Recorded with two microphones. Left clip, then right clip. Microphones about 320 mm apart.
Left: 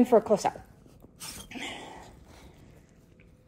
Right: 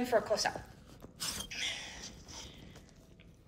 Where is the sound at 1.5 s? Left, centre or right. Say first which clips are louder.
Left 1 dB; left.